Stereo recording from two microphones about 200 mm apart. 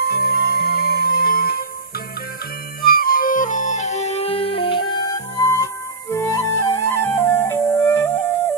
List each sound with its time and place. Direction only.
0.0 s music: 50° left (ahead or behind)
2.8 s music: 45° left (ahead or behind); by 8.3 s 10° left (ahead or behind)